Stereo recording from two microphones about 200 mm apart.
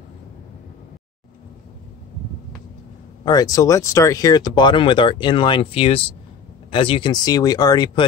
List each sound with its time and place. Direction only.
3.3 s speech: 20° left (ahead or behind)